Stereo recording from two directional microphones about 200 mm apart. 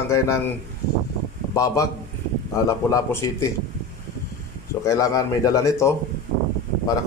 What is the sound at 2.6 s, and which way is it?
Speech, 15° left (ahead or behind).